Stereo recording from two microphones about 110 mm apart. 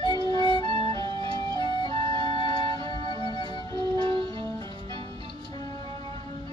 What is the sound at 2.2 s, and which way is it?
Music, 45° left (ahead or behind).